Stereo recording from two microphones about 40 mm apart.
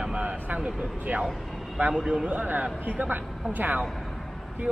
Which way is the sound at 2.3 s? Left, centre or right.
Right.